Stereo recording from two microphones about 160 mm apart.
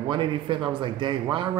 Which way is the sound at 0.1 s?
30° right (ahead or behind).